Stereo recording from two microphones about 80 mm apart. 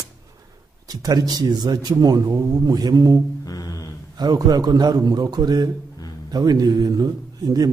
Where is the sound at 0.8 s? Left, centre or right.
Right.